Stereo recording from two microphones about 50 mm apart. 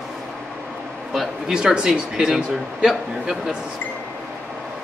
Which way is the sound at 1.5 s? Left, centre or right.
Centre.